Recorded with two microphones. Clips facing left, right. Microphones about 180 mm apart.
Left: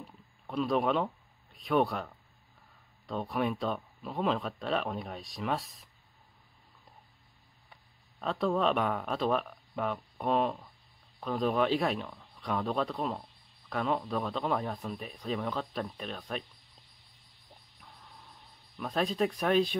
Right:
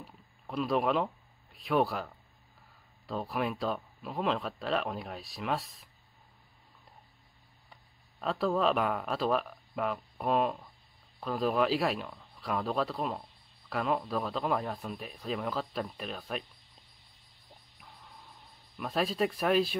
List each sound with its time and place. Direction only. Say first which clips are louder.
0.0 s a sound: left 1 dB; centre (ahead or behind)
3.1 s speech: left 1 dB; centre (ahead or behind)
8.2 s speech: even; centre (ahead or behind)
18.8 s speech: even; 5° right (ahead or behind)